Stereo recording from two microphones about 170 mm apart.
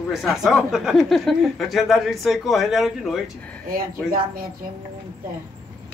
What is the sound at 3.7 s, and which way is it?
Speech, 55° right (ahead or behind).